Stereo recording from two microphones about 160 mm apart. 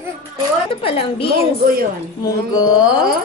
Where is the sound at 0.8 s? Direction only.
35° left (ahead or behind).